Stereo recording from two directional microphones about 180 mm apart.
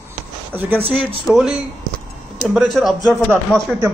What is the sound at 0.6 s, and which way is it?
Speech, 10° right (ahead or behind).